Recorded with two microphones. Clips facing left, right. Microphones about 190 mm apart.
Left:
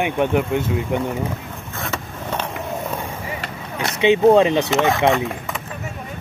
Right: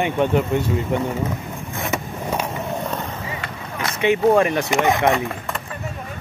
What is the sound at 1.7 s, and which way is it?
Vehicle, 15° right (ahead or behind).